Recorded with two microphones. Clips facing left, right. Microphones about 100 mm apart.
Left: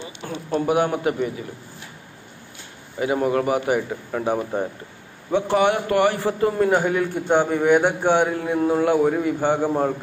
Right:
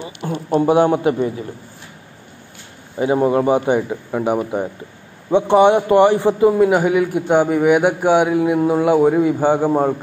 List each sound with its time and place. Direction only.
0.2 s a sound: 55° right (ahead or behind)
0.6 s a man's voice: 30° right (ahead or behind)
3.0 s a man's voice: 30° right (ahead or behind)
6.5 s a man's voice: 10° right (ahead or behind)